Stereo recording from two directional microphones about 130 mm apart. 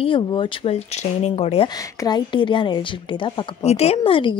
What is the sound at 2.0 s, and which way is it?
A woman's voice, 35° left (ahead or behind).